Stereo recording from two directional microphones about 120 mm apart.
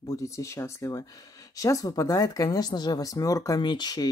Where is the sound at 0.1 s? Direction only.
25° left (ahead or behind).